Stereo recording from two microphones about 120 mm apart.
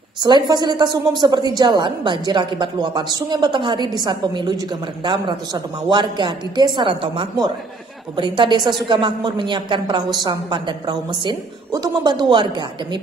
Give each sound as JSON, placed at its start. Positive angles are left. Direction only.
{"t": 0.2, "sound": "a woman's voice", "side_deg": -35}